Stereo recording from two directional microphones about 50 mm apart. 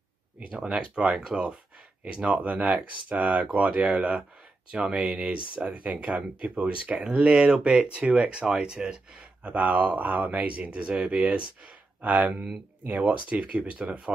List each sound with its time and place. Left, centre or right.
0.7 s speech: right
9.4 s speech: right
12.0 s speech: right